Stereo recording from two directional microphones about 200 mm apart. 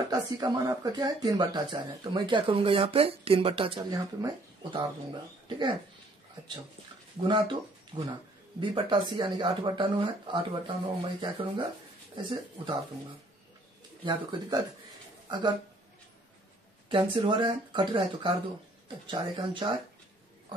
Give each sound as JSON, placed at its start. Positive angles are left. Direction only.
{"t": 0.1, "sound": "speech", "side_deg": -20}
{"t": 7.2, "sound": "speech", "side_deg": -25}
{"t": 14.0, "sound": "speech", "side_deg": -25}
{"t": 16.9, "sound": "speech", "side_deg": -25}